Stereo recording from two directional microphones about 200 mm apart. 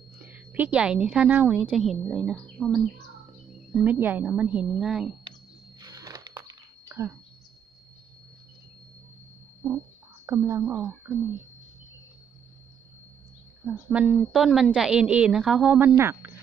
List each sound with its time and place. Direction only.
0.2 s a woman's voice: 10° right (ahead or behind)
3.7 s a woman's voice: 10° right (ahead or behind)
5.8 s a sound: 20° right (ahead or behind)
10.2 s a woman's voice: 15° right (ahead or behind)
13.7 s a woman's voice: 5° right (ahead or behind)